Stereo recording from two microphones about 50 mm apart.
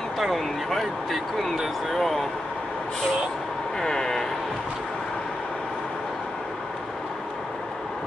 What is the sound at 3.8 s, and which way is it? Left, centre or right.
Speech, centre.